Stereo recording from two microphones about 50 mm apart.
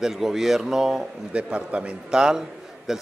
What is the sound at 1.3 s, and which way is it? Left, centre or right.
A man's voice, right.